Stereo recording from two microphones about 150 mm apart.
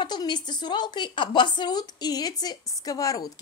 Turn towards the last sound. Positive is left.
turn(degrees=25)  # may be behind; listen again after turning